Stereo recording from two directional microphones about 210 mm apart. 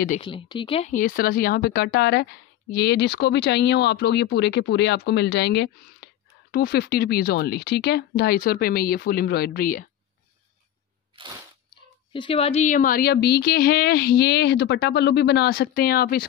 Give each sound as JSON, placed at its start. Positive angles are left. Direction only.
{"t": 0.2, "sound": "speech", "side_deg": 25}
{"t": 11.7, "sound": "speech", "side_deg": 25}